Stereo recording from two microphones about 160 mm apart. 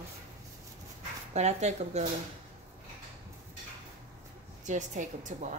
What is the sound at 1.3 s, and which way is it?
Speech, 45° right (ahead or behind).